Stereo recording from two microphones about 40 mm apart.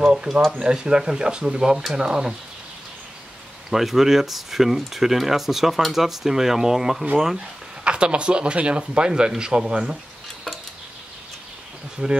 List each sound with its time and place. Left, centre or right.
0.1 s speech: centre
3.7 s speech: centre
7.8 s speech: right
12.0 s speech: right